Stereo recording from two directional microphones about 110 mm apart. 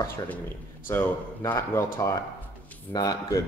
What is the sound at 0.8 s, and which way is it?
Speech, 20° left (ahead or behind).